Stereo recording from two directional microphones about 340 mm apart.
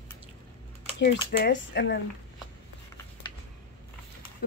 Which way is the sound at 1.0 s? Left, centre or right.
Left.